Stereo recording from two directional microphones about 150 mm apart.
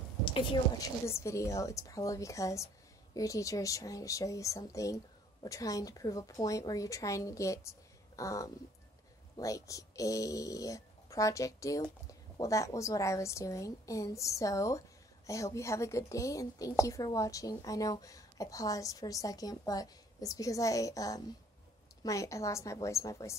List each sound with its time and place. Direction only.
0.2 s speech: 35° left (ahead or behind)
1.0 s a woman's voice: 20° left (ahead or behind)